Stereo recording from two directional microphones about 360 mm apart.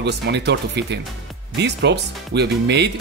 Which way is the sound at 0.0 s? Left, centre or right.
Right.